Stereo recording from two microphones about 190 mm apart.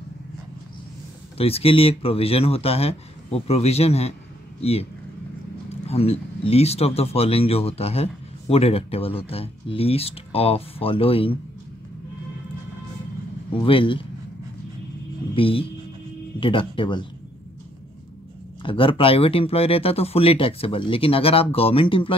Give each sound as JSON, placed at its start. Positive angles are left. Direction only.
{"t": 1.4, "sound": "speech", "side_deg": 30}
{"t": 5.9, "sound": "speech", "side_deg": 30}
{"t": 13.6, "sound": "speech", "side_deg": 25}
{"t": 15.3, "sound": "speech", "side_deg": 30}
{"t": 18.6, "sound": "speech", "side_deg": 25}